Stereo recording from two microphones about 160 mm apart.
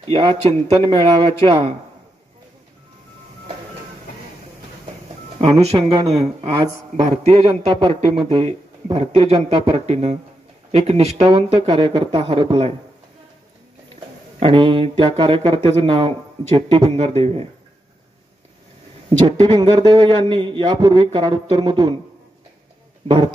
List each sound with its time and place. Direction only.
0.1 s a man's voice: 30° right (ahead or behind)
5.4 s a man's voice: 35° right (ahead or behind)
13.9 s a man's voice: 30° right (ahead or behind)
19.0 s a man's voice: 30° right (ahead or behind)
23.0 s a man's voice: 30° right (ahead or behind)